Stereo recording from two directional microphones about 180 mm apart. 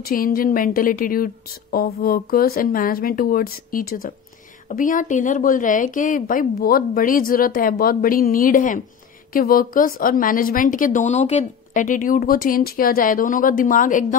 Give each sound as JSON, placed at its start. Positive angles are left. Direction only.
{"t": 0.0, "sound": "speech", "side_deg": 55}